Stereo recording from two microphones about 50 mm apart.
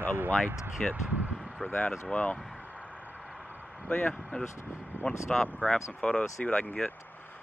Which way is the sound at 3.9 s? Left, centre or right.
Left.